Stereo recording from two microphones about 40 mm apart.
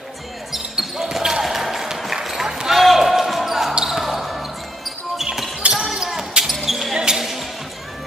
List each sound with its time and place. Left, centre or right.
0.5 s basketball bounce: centre
7.0 s basketball bounce: centre